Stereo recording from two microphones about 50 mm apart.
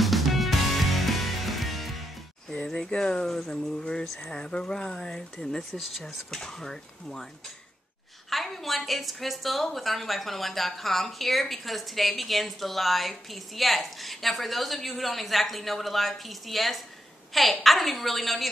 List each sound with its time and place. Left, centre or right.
0.0 s music: centre
2.5 s speech: centre
6.3 s speech: centre
8.3 s a woman's voice: centre